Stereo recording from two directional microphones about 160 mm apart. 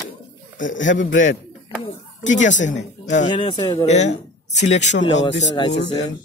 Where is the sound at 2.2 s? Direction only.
50° left (ahead or behind).